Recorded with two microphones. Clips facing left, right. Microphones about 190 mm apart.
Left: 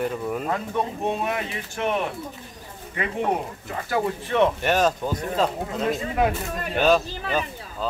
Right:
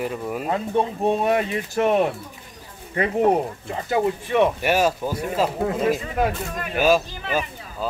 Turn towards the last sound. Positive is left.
turn(degrees=-10)  # may be behind; listen again after turning